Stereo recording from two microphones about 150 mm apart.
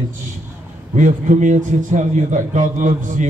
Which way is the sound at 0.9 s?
55° right (ahead or behind).